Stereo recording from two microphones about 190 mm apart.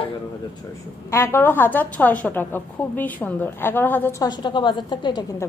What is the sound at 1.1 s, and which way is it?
A woman's voice, 15° left (ahead or behind).